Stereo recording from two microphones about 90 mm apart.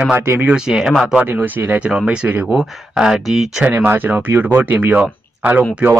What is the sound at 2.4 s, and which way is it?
Speech, 5° right (ahead or behind).